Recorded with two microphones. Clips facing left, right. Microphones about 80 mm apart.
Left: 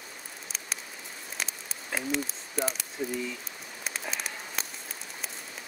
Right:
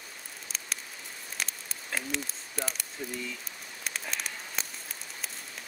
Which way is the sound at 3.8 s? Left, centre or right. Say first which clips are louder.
Left 1 dB; centre.